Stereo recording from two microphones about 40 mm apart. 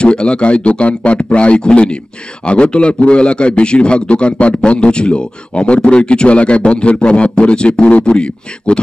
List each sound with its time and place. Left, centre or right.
0.0 s a man's voice: left